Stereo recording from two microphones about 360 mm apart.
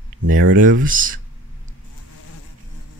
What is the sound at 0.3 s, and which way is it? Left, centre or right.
Speech, right.